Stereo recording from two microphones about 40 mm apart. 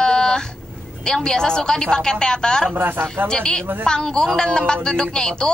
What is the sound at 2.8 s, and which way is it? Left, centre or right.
Speech, right.